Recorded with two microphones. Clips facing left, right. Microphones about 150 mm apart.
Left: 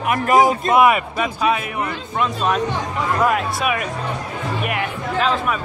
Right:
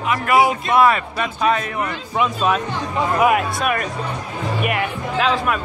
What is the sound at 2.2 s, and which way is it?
Speech, 5° right (ahead or behind).